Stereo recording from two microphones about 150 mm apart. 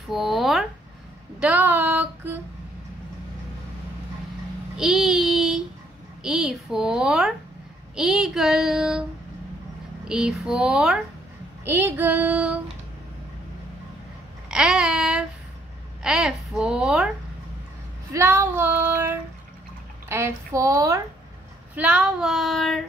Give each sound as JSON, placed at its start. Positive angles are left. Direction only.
{"t": 0.1, "sound": "speech", "side_deg": 0}
{"t": 1.4, "sound": "child singing", "side_deg": -10}
{"t": 4.7, "sound": "child singing", "side_deg": 0}
{"t": 6.2, "sound": "a woman's voice", "side_deg": -5}
{"t": 10.0, "sound": "a woman's voice", "side_deg": -5}
{"t": 11.6, "sound": "child singing", "side_deg": -15}
{"t": 14.5, "sound": "babbling", "side_deg": -5}
{"t": 16.0, "sound": "a woman's voice", "side_deg": -5}
{"t": 18.1, "sound": "child singing", "side_deg": -15}
{"t": 20.1, "sound": "speech", "side_deg": -15}
{"t": 21.7, "sound": "a woman's voice", "side_deg": -5}